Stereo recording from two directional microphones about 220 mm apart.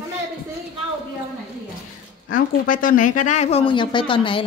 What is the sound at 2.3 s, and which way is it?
Speech, 40° left (ahead or behind).